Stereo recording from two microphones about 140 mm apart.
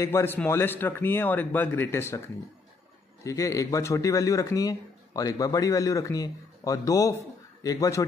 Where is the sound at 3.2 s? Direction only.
25° left (ahead or behind).